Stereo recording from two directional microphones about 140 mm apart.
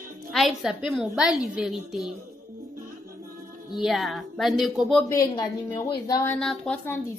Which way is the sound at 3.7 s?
Centre (ahead or behind).